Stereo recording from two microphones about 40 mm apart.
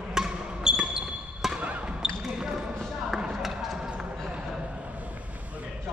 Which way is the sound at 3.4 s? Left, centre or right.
Centre.